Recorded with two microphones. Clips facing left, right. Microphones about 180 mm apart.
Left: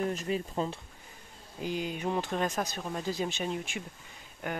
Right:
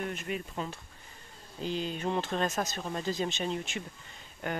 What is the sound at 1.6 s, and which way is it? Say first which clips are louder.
Speech: even; 10° left (ahead or behind).